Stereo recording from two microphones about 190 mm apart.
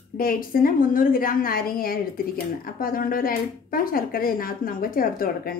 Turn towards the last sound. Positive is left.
turn(degrees=50)  # may be behind; listen again after turning